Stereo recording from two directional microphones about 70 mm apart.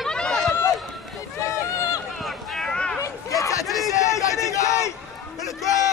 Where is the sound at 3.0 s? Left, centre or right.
Left.